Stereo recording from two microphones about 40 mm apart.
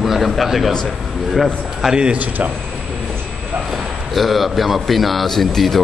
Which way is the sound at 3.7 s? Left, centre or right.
Centre.